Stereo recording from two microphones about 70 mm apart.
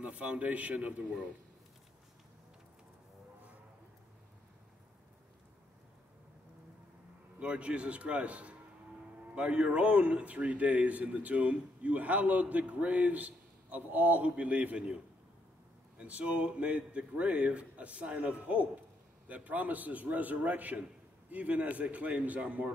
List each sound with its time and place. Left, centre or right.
0.0 s a man's voice: centre
7.3 s a man's voice: centre
16.0 s a man's voice: centre